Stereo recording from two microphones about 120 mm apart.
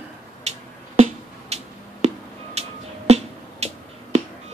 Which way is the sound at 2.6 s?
60° right (ahead or behind).